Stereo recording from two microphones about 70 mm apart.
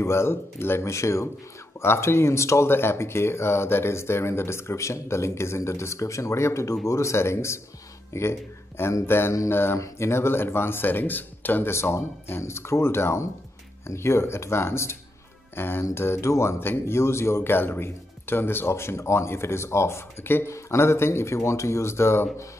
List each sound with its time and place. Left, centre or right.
0.0 s speech: left
11.7 s speech: left